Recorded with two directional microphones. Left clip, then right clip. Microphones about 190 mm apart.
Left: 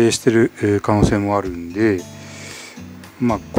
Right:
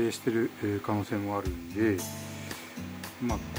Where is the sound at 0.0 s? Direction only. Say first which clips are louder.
Left 14 dB; 65° left (ahead or behind).